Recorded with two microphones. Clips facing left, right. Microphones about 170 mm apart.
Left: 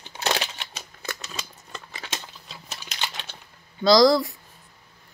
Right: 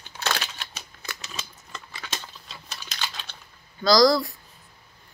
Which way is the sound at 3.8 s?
25° left (ahead or behind).